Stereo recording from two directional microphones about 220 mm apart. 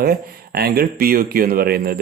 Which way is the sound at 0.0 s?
45° right (ahead or behind).